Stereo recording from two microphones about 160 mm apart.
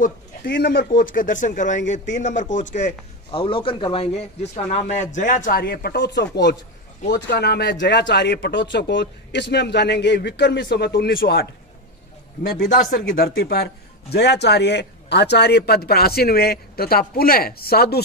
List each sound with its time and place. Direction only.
0.5 s a man's voice: 80° left; by 2.9 s 50° left (ahead or behind)
3.3 s a man's voice: 35° left (ahead or behind); by 11.4 s 80° left
12.4 s speech: 55° left (ahead or behind); by 13.7 s 70° left (ahead or behind)
14.1 s speech: 90° left